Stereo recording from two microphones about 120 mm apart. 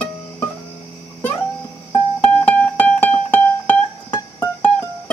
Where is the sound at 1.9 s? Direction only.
10° left (ahead or behind).